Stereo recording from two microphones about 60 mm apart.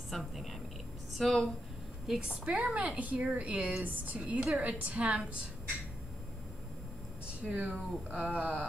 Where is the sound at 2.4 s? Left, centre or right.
Right.